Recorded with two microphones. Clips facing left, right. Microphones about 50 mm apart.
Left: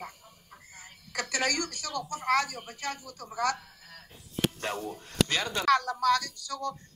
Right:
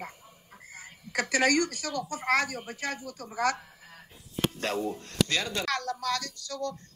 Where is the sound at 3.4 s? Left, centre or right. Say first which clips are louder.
Right 1 dB; right.